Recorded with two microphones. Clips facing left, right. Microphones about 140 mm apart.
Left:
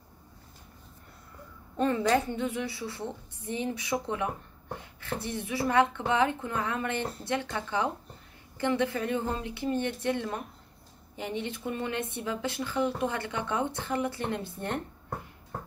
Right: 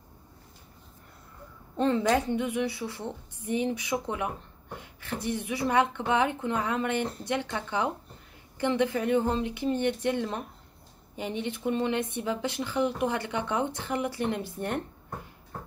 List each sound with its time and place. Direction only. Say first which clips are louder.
1.9 s speech: right 2 dB; 15° right (ahead or behind)